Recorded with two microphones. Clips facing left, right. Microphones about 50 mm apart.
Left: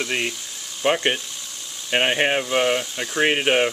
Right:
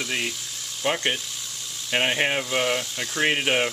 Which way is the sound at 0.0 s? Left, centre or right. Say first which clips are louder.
Left 3 dB; centre.